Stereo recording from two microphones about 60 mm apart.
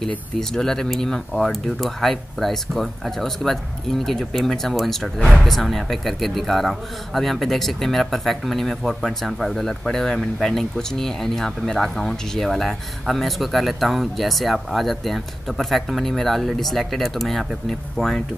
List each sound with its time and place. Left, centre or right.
0.4 s speech: centre